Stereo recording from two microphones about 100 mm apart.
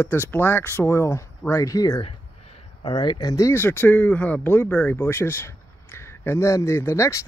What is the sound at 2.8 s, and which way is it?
Speech, 50° left (ahead or behind).